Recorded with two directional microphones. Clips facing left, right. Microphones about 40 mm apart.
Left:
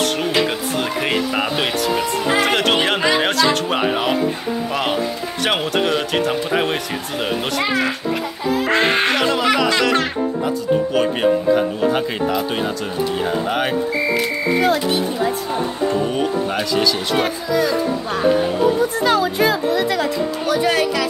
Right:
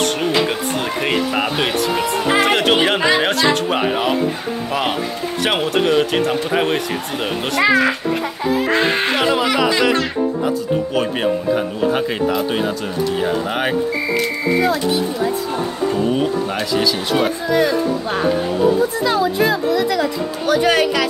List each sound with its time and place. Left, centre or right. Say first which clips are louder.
0.2 s speech: right 1 dB; centre
5.4 s speech: right 1 dB; centre
7.6 s speech: right 7 dB; right
9.1 s speech: even; centre
11.0 s speech: left 2 dB; centre
16.1 s speech: right 1 dB; centre
17.5 s speech: right 2 dB; right
19.0 s speech: left 1 dB; left
20.4 s speech: right 4 dB; right